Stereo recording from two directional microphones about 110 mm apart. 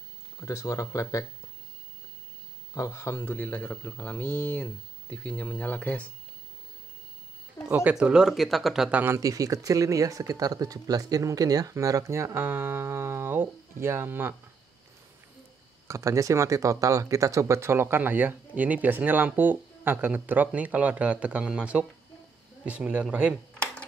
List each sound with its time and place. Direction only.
0.4 s speech: 30° left (ahead or behind)
2.7 s speech: 25° left (ahead or behind)
7.6 s speech: 10° right (ahead or behind)
9.0 s speech: 30° right (ahead or behind)
15.9 s speech: 25° right (ahead or behind); by 23.3 s 10° right (ahead or behind)
23.6 s computer keyboard: 10° left (ahead or behind)